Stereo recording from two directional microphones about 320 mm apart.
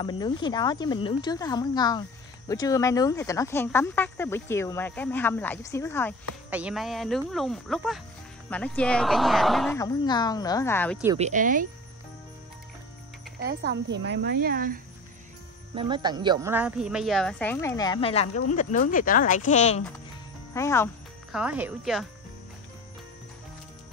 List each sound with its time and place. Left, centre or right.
0.0 s speech: centre
9.8 s speech: centre
11.1 s speech: right
13.4 s speech: right
15.7 s speech: centre; by 19.8 s left
20.5 s music: centre
21.4 s speech: centre